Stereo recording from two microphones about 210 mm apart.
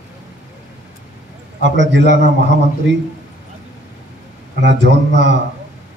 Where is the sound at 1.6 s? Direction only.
60° right (ahead or behind).